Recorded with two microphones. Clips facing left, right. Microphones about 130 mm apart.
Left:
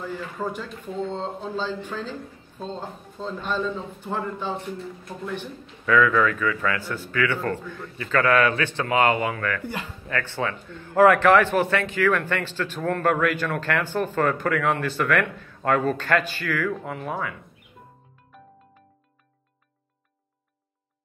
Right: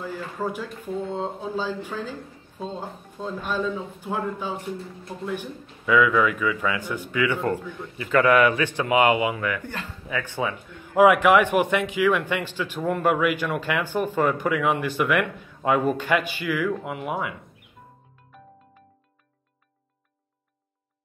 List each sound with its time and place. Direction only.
0.0 s a man's voice: 10° right (ahead or behind)
9.6 s speech: 10° left (ahead or behind)
10.0 s a man's voice: 10° right (ahead or behind)